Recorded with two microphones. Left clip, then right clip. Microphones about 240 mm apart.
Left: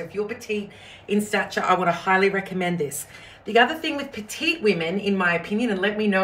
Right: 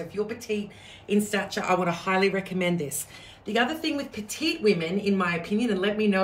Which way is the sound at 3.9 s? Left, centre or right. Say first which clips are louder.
Left 2 dB; centre.